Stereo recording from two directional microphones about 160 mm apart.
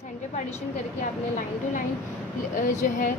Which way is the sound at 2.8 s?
55° left (ahead or behind).